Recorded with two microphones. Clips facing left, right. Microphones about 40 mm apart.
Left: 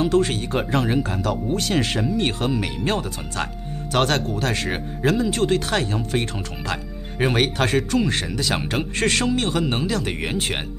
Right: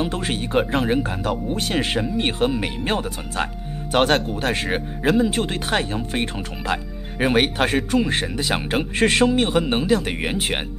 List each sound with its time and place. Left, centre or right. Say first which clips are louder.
0.0 s speech: left 4 dB; centre